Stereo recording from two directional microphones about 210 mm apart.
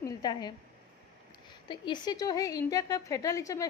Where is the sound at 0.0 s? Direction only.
20° left (ahead or behind).